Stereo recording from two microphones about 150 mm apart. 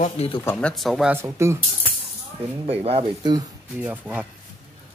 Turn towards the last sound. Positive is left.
turn(degrees=-10)  # may be behind; listen again after turning